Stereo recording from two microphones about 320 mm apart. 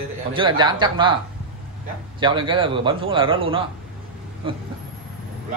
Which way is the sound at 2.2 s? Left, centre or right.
Centre.